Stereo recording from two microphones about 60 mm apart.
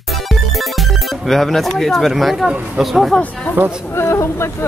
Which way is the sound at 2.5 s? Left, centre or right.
Centre.